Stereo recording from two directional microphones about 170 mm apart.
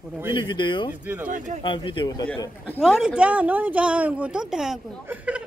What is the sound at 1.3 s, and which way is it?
Speech, 50° right (ahead or behind).